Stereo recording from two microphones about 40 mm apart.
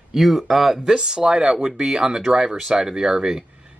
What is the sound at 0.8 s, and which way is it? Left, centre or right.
Speech, centre.